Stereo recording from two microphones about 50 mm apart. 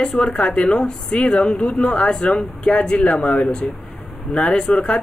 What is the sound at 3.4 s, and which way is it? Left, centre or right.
Speech, centre.